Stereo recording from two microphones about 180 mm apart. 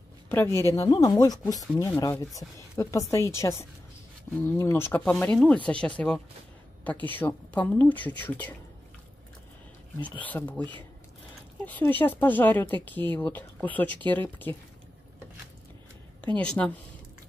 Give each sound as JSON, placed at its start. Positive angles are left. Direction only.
{"t": 0.3, "sound": "speech", "side_deg": 15}
{"t": 6.8, "sound": "a sound", "side_deg": 10}
{"t": 7.2, "sound": "speech", "side_deg": 10}
{"t": 10.2, "sound": "speech", "side_deg": 10}
{"t": 16.3, "sound": "speech", "side_deg": 5}